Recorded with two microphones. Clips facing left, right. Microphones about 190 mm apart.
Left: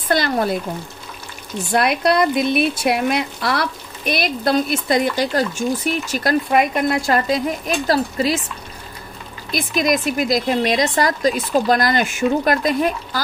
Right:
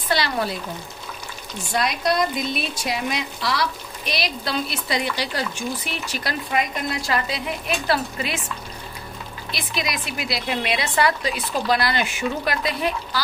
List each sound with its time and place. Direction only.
0.1 s speech: 50° left (ahead or behind)
1.7 s speech: 60° left (ahead or behind); by 8.4 s 40° left (ahead or behind)
9.5 s speech: 45° left (ahead or behind)